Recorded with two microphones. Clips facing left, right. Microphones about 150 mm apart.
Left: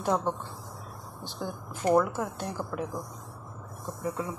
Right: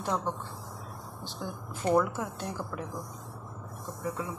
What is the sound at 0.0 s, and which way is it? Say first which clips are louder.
Speech: left 4 dB; 20° left (ahead or behind).